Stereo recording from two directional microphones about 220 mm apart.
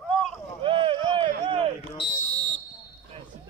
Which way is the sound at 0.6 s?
25° right (ahead or behind).